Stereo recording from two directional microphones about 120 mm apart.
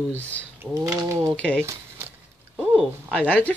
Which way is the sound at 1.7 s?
20° right (ahead or behind).